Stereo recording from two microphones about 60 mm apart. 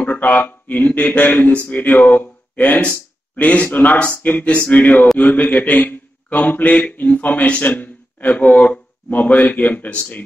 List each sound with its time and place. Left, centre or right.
0.0 s a man's voice: left